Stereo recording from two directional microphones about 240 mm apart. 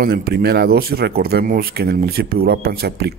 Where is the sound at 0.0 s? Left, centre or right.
Right.